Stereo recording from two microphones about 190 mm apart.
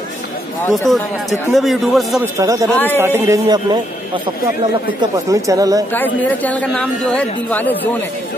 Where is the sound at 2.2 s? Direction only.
15° right (ahead or behind).